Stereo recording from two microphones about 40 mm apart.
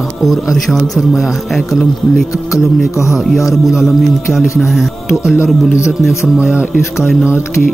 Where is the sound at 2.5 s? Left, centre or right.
Centre.